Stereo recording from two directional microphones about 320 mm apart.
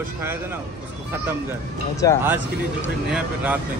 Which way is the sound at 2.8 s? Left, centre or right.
Centre.